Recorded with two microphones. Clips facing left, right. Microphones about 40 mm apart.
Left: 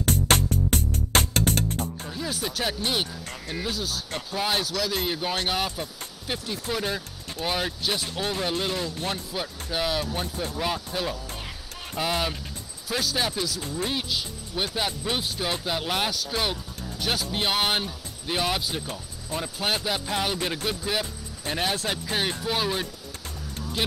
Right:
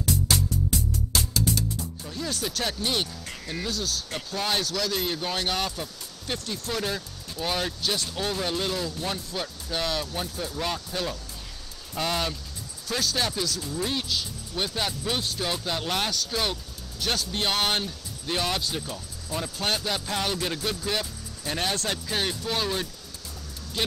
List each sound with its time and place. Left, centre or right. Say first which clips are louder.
0.0 s music: left 3 dB; left
2.0 s speech: left 1 dB; centre